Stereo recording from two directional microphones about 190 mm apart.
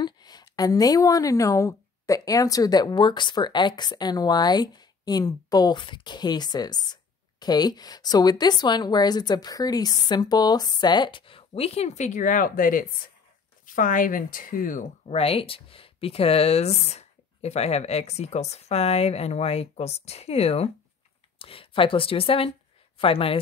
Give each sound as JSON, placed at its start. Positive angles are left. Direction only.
{"t": 0.0, "sound": "a woman's voice", "side_deg": 20}